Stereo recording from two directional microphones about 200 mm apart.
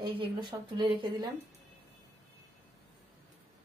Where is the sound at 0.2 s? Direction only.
25° right (ahead or behind).